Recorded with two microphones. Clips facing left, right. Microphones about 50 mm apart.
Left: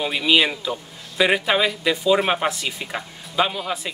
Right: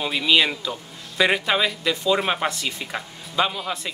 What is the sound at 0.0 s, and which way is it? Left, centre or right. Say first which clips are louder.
Speech: left 1 dB; centre.